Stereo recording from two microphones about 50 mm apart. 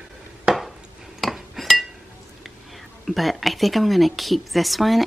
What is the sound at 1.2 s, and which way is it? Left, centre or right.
Cutlery, centre.